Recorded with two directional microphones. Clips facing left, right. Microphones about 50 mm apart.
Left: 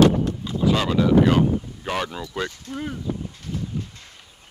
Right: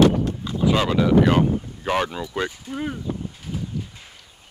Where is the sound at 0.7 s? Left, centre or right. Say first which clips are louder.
Right 1 dB; centre.